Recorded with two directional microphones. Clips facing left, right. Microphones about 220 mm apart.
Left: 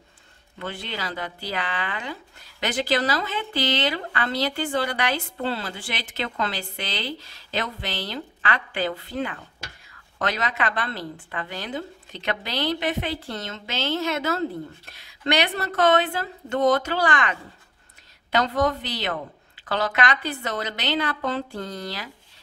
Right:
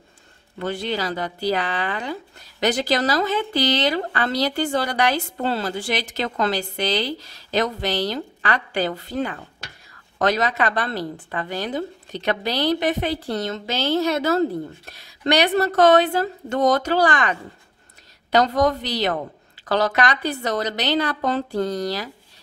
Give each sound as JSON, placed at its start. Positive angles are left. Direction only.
{"t": 0.6, "sound": "a woman's voice", "side_deg": -40}